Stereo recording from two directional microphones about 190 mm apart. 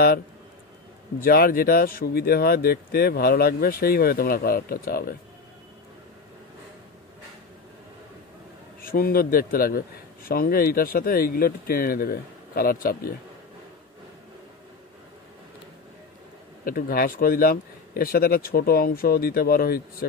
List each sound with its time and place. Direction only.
1.2 s speech: 50° left (ahead or behind)
8.8 s speech: 50° left (ahead or behind)
16.6 s speech: 50° left (ahead or behind)